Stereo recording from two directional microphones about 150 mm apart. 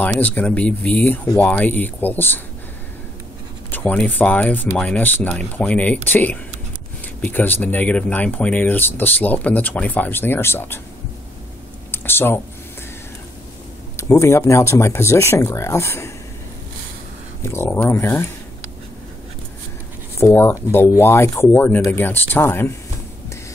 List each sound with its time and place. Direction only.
0.0 s speech: 10° left (ahead or behind)
3.7 s speech: 10° left (ahead or behind)
11.9 s a sound: 15° left (ahead or behind)
13.9 s speech: 20° left (ahead or behind)
17.4 s speech: 15° left (ahead or behind)
20.2 s speech: 15° left (ahead or behind)